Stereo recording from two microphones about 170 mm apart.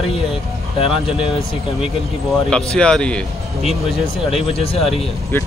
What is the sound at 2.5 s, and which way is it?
Speech, 5° left (ahead or behind).